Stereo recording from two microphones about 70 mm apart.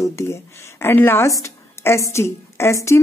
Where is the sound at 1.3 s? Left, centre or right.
Left.